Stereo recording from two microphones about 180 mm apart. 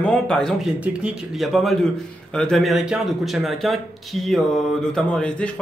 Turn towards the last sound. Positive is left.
turn(degrees=5)  # may be behind; listen again after turning